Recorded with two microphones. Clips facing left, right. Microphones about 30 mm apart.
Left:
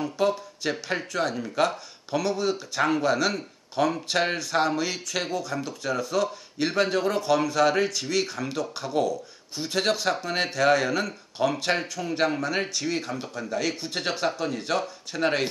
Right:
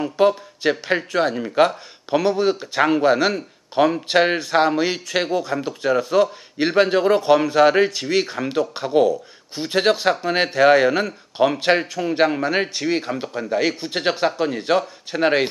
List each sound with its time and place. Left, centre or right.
0.0 s speech: right